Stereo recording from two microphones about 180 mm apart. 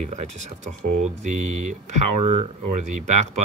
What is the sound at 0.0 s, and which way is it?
Speech, 40° right (ahead or behind).